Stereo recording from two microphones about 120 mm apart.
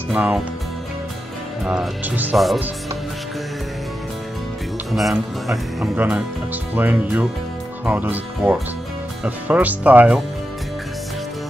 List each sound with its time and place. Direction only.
0.1 s speech: 10° right (ahead or behind)
1.6 s speech: 5° right (ahead or behind)
2.0 s speech: 15° right (ahead or behind)
2.3 s speech: centre (ahead or behind)
4.9 s speech: centre (ahead or behind)